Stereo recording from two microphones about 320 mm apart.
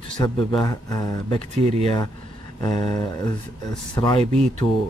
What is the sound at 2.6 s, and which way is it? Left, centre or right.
Speech, centre.